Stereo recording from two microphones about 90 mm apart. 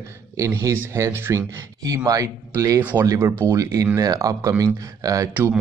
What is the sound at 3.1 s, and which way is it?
Speech, 30° right (ahead or behind).